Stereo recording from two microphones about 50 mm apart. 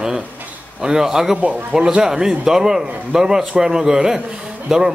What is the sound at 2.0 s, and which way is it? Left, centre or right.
A man's voice, centre.